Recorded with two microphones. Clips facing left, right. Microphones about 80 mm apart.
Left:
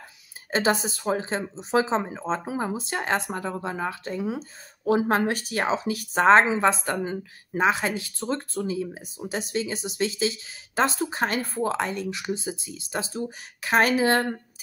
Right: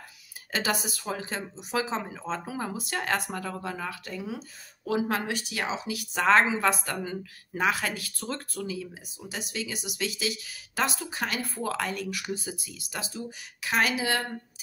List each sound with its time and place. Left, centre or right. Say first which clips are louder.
0.5 s speech: left 6 dB; left